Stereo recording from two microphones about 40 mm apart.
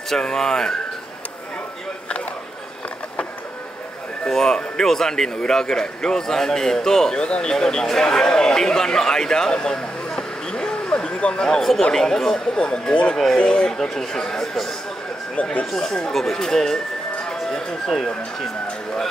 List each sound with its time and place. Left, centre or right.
0.1 s a man's voice: centre
4.2 s a man's voice: centre
7.5 s a man's voice: centre
11.0 s a sound: left
11.4 s a man's voice: centre
12.5 s speech: left
13.7 s a man's voice: centre
15.7 s a man's voice: centre